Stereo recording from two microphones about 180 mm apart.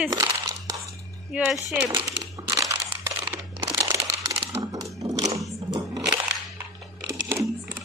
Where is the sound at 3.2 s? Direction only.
20° right (ahead or behind).